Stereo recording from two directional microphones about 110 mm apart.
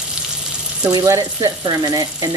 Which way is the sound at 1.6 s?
40° right (ahead or behind).